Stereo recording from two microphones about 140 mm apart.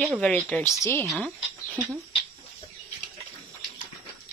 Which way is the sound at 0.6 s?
20° left (ahead or behind).